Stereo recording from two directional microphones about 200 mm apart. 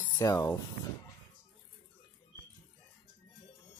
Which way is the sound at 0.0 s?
15° left (ahead or behind).